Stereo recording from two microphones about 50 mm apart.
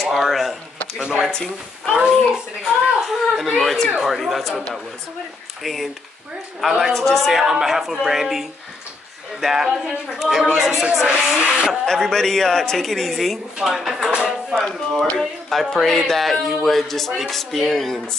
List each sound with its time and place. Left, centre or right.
0.0 s a woman's voice: centre
0.9 s speech: centre
2.6 s a woman's voice: centre
11.8 s a woman's voice: centre
15.1 s a woman's voice: centre